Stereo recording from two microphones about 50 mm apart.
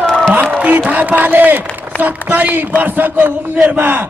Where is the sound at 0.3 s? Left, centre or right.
Right.